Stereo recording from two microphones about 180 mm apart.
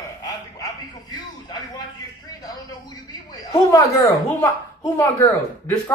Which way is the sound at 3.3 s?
20° left (ahead or behind).